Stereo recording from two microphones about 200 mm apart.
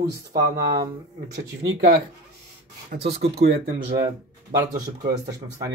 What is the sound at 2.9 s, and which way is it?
Speech, 60° right (ahead or behind).